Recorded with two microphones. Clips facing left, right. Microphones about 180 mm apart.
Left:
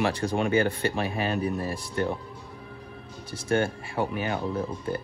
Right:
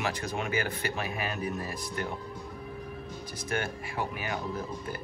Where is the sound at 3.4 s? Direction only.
30° left (ahead or behind).